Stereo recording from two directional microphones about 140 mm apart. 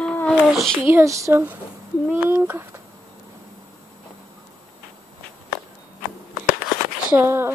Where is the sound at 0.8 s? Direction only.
20° right (ahead or behind).